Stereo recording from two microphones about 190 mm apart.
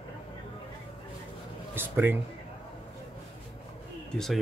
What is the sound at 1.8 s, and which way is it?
Speech, 10° right (ahead or behind).